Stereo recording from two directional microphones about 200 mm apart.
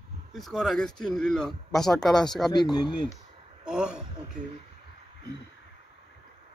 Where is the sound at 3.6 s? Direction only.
5° right (ahead or behind).